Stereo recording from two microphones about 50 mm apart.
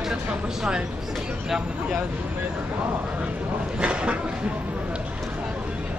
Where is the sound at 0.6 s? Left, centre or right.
Centre.